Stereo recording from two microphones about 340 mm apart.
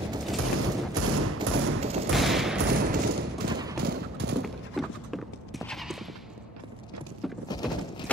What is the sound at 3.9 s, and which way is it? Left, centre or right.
Clip-clop, right.